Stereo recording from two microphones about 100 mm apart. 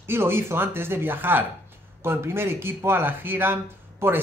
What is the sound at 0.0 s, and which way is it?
Speech, 25° right (ahead or behind).